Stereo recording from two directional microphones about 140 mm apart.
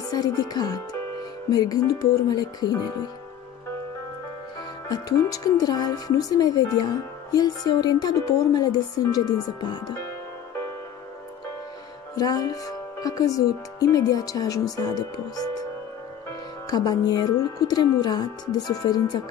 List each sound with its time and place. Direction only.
0.1 s speech: 30° left (ahead or behind)
4.8 s speech: 25° left (ahead or behind)
9.9 s music: 20° left (ahead or behind)
12.2 s speech: 25° left (ahead or behind)